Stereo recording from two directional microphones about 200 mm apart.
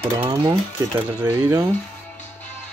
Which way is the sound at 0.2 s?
25° right (ahead or behind).